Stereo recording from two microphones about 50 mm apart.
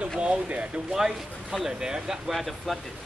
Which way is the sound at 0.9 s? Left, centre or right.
Centre.